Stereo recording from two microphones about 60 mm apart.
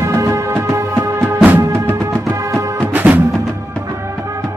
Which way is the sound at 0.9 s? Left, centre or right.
Right.